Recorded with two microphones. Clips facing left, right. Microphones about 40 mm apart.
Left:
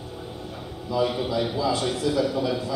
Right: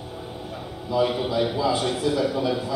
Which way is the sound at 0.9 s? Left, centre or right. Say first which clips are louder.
Right 2 dB; centre.